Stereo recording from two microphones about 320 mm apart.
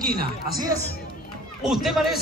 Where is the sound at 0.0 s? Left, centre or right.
Right.